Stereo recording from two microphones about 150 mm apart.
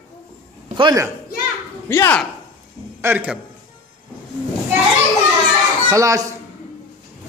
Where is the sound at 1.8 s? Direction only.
15° left (ahead or behind).